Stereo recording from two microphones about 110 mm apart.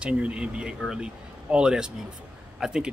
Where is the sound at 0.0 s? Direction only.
10° right (ahead or behind).